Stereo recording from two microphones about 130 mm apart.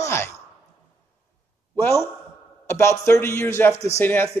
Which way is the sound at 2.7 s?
20° left (ahead or behind).